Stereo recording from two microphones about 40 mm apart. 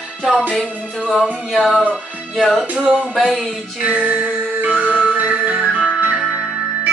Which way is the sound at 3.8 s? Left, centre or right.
Right.